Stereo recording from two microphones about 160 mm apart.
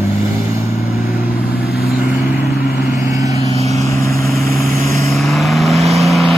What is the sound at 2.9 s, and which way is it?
Vehicle, 20° right (ahead or behind).